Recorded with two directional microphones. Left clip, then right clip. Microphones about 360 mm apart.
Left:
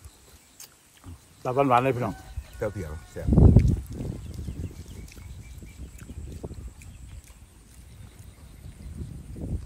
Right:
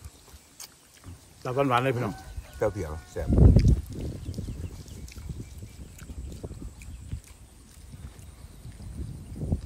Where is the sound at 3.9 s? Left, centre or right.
Left.